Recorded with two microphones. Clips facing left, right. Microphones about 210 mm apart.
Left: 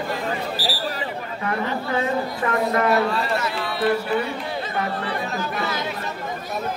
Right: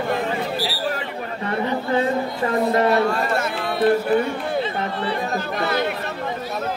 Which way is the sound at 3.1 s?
50° right (ahead or behind).